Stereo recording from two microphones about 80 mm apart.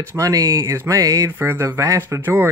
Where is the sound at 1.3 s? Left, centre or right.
Right.